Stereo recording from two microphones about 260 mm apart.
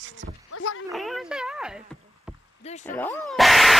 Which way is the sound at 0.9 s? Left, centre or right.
Centre.